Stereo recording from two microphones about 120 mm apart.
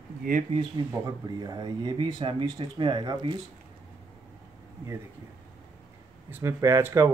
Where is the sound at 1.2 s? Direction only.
35° right (ahead or behind).